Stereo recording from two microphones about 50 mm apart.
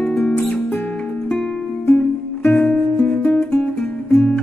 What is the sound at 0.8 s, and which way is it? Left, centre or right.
Music, left.